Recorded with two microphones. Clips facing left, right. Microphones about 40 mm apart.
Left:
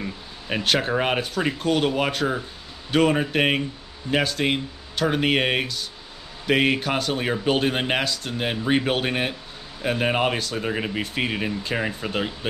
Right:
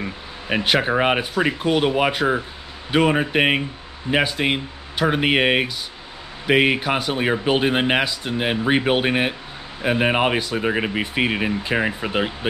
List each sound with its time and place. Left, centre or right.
0.0 s speech: right